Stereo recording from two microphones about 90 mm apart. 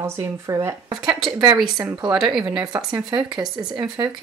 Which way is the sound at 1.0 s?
5° right (ahead or behind).